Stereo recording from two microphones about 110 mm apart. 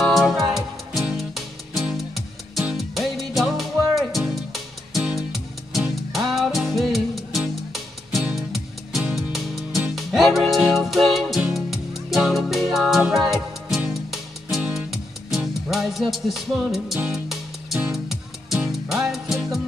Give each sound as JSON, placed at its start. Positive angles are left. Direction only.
{"t": 0.0, "sound": "music", "side_deg": 0}